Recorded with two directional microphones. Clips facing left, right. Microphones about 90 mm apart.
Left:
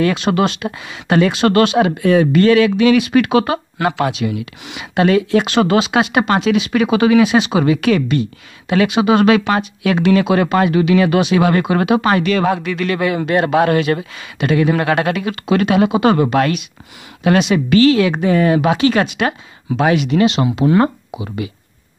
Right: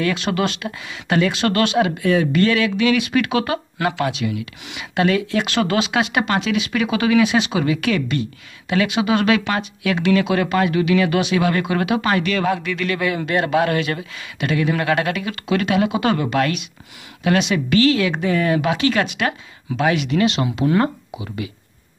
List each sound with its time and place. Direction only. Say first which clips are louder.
0.0 s speech: left 5 dB; 35° left (ahead or behind)
5.4 s speech: left 5 dB; 25° left (ahead or behind)
7.2 s speech: left 5 dB; 40° left (ahead or behind)
11.1 s speech: left 5 dB; 40° left (ahead or behind)
15.9 s speech: left 6 dB; 25° left (ahead or behind)
16.3 s speech: left 4 dB; 35° left (ahead or behind)
17.7 s speech: left 5 dB; 30° left (ahead or behind)
20.3 s speech: left 5 dB; 20° left (ahead or behind)